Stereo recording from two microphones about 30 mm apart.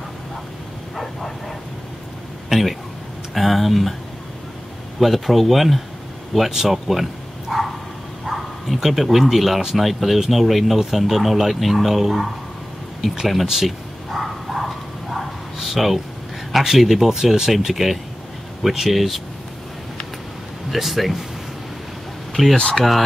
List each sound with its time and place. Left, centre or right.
2.5 s speech: centre
5.0 s speech: centre
8.3 s bow-wow: centre
8.7 s speech: centre
13.5 s a sound: centre
16.6 s speech: centre
20.7 s speech: centre
22.3 s speech: centre
22.6 s speech: left